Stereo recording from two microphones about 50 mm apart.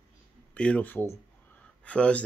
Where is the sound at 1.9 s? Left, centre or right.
Left.